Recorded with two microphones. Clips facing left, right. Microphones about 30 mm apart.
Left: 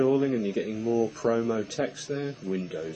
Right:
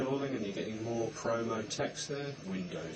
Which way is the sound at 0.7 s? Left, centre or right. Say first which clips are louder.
Left 9 dB; left.